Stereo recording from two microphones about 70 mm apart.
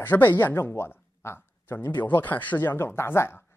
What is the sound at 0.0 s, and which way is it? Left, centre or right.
Speech, left.